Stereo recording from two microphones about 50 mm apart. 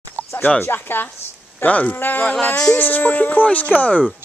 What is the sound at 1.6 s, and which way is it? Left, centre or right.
Speech, left.